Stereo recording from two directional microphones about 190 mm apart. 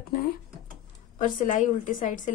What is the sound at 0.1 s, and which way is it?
A woman's voice, 50° left (ahead or behind).